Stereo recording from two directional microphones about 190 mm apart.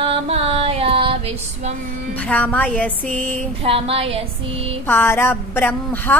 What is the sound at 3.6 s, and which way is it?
Music, 30° right (ahead or behind).